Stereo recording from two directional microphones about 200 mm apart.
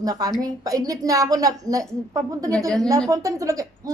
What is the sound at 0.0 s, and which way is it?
A woman's voice, 20° right (ahead or behind).